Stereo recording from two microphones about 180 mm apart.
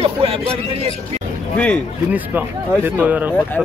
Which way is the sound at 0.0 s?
30° right (ahead or behind).